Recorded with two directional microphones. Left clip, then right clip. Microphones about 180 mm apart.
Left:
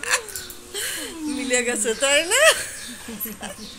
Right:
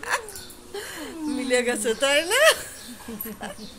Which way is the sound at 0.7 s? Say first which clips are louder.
Left 5 dB; 35° right (ahead or behind).